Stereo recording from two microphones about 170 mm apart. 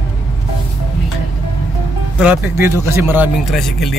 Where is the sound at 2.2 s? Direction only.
10° right (ahead or behind).